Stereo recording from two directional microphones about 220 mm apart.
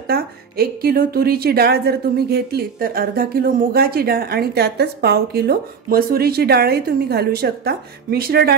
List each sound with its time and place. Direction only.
0.0 s a woman's voice: 45° right (ahead or behind)